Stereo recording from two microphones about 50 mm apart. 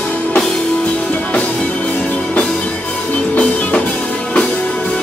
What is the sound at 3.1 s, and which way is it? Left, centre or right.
Music, left.